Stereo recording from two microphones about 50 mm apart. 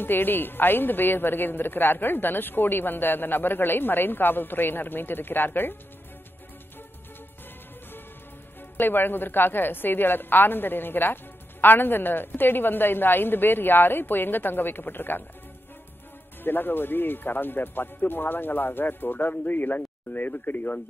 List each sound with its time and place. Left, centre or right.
0.0 s a woman's voice: left
8.7 s a woman's voice: left
16.4 s speech: left